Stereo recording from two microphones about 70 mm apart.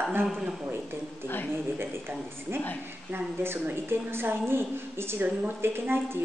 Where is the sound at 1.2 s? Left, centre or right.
Left.